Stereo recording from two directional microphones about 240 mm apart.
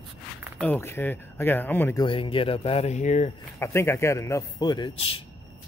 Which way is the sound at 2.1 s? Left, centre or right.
Left.